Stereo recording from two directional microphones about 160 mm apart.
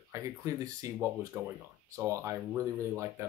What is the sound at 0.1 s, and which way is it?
Speech, 20° right (ahead or behind).